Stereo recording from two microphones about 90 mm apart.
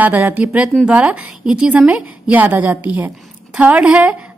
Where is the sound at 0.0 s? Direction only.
20° right (ahead or behind).